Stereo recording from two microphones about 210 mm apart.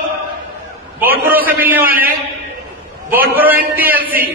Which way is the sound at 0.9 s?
10° right (ahead or behind).